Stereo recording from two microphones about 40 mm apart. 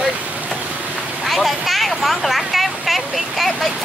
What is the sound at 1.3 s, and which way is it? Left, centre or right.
Speech, centre.